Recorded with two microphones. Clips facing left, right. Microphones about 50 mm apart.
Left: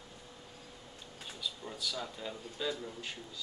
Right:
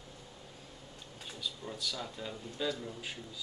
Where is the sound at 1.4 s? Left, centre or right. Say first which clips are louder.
Even; centre.